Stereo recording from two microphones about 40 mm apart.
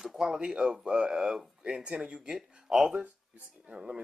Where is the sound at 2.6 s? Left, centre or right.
Centre.